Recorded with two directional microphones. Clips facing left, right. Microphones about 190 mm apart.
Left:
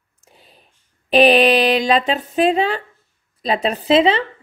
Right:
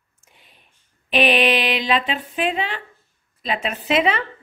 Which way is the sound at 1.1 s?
35° left (ahead or behind).